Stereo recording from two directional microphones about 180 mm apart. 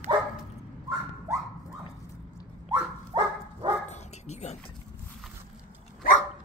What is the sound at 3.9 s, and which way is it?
Bow-wow, 40° left (ahead or behind).